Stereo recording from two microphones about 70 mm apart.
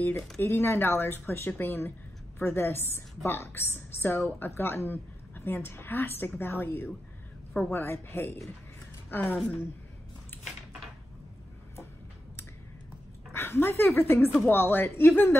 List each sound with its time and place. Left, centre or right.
0.4 s a woman's voice: left
10.3 s a sound: left
13.3 s a woman's voice: left